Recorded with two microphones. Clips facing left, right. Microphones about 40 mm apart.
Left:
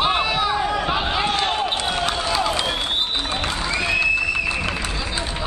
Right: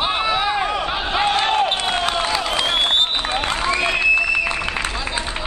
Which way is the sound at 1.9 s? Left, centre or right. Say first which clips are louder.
Right 2 dB; right.